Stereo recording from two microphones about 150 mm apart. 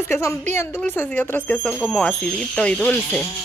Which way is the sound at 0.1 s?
15° left (ahead or behind).